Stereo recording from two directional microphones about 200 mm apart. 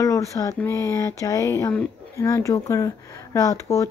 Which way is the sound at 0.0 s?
15° left (ahead or behind).